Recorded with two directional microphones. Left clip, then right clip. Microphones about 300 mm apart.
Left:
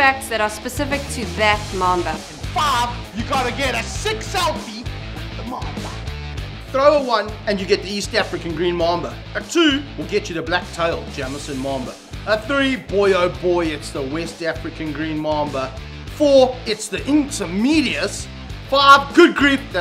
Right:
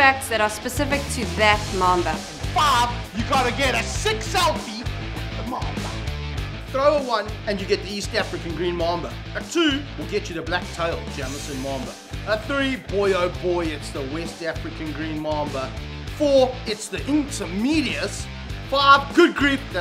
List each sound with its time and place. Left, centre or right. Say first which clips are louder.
0.0 s a woman's voice: left 1 dB; centre
5.5 s music: even; centre
6.7 s a woman's voice: left 5 dB; centre